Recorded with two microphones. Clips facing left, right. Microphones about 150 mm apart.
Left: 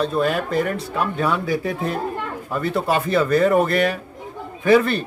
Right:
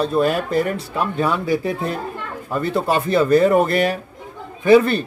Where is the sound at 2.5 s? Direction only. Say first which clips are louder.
Right 2 dB; centre (ahead or behind).